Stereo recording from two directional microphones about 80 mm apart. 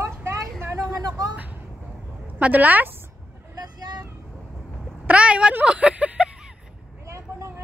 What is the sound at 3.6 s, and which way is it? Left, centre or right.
Vehicle, right.